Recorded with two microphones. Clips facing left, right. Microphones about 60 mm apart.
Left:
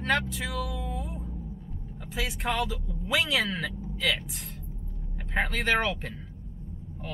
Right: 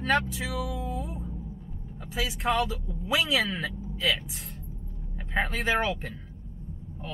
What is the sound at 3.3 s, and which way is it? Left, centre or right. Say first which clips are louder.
Speech: right 1 dB; centre.